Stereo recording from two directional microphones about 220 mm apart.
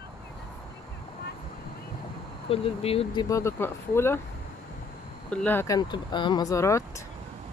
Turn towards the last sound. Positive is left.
turn(degrees=15)  # may be behind; listen again after turning